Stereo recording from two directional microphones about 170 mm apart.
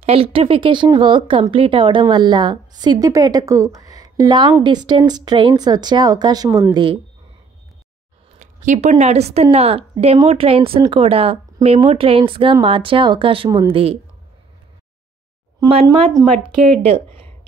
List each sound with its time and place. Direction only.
0.0 s speech: 35° right (ahead or behind)
8.4 s speech: 45° right (ahead or behind)
15.7 s speech: 35° right (ahead or behind)